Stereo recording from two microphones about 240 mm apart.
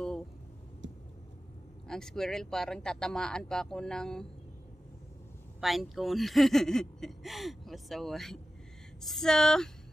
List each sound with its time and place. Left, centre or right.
0.8 s vehicle: right
1.9 s speech: centre
5.6 s speech: centre